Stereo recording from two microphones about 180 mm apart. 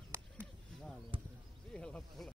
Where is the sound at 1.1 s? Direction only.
30° right (ahead or behind).